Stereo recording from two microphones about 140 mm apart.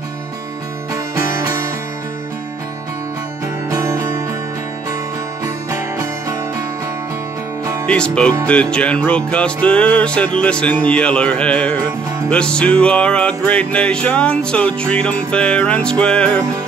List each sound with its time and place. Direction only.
0.9 s music: 20° right (ahead or behind)
3.7 s music: 25° right (ahead or behind)
5.4 s music: 25° right (ahead or behind)
7.8 s music: 5° left (ahead or behind)